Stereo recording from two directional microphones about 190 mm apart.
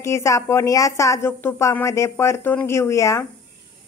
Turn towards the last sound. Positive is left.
turn(degrees=15)  # may be behind; listen again after turning